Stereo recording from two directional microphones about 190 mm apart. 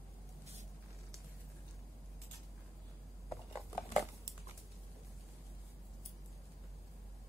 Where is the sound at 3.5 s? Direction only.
Centre (ahead or behind).